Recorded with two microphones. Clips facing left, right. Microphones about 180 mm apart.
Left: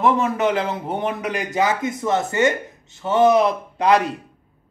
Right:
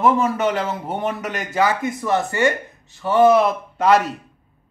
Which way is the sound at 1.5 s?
20° left (ahead or behind).